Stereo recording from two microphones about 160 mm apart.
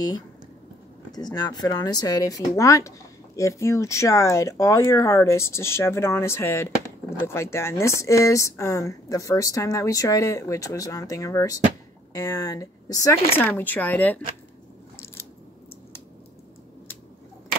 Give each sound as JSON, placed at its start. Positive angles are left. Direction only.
{"t": 1.1, "sound": "speech", "side_deg": 25}